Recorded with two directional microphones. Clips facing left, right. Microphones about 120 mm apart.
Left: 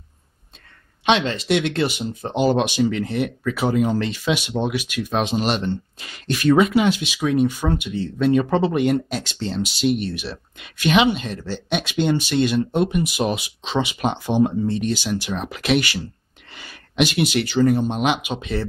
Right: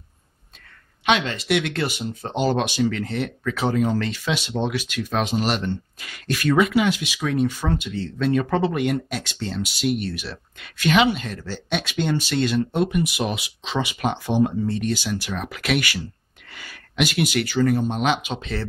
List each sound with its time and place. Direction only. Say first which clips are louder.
1.0 s speech: left 2 dB; 30° left (ahead or behind)
7.2 s speech: left 3 dB; 15° left (ahead or behind)
13.0 s speech: left 3 dB; 35° left (ahead or behind)
13.7 s speech: left 2 dB; 20° left (ahead or behind)